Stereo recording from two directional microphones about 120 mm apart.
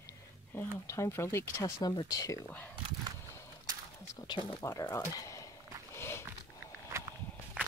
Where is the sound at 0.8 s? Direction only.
25° left (ahead or behind).